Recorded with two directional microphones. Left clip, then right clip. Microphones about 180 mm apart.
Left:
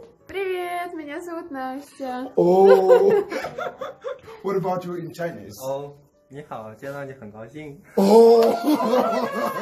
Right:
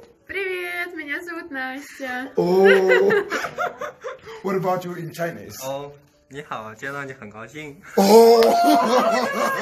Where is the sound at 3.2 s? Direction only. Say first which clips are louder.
Right 4 dB; 35° right (ahead or behind).